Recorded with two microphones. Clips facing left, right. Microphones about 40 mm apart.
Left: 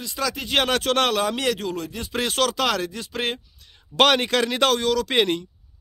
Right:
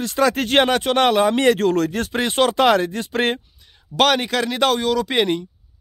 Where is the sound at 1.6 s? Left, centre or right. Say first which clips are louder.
Right 10 dB; right.